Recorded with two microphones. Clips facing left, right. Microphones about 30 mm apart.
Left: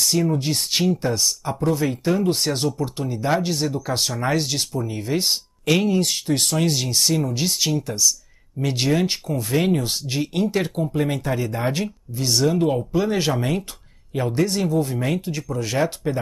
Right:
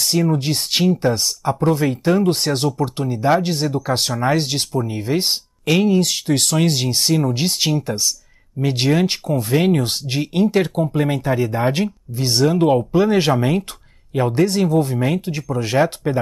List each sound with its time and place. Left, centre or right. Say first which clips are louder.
0.0 s speech: right 2 dB; right
3.9 s speech: right 4 dB; right
4.2 s speech: right 4 dB; centre
5.9 s speech: right 3 dB; right
9.3 s speech: right 4 dB; centre
9.8 s speech: right 3 dB; right
14.9 s speech: right 4 dB; centre
15.2 s speech: right 3 dB; right